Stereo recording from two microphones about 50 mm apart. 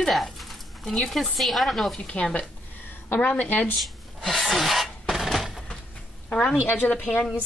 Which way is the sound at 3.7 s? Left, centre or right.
Centre.